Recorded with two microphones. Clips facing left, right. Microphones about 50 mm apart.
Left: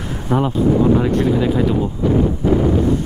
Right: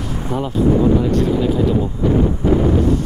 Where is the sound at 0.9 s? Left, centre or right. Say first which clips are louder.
Left 1 dB; left.